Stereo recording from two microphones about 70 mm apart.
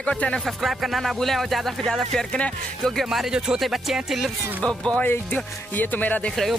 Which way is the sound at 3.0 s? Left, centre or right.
Centre.